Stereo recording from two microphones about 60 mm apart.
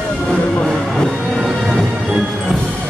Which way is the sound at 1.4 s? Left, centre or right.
Centre.